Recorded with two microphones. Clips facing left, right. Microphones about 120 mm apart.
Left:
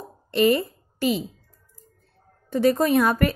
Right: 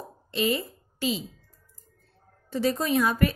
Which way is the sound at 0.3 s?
55° left (ahead or behind).